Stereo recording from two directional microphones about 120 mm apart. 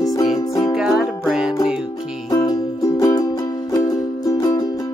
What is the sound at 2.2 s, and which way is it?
Music, 30° left (ahead or behind).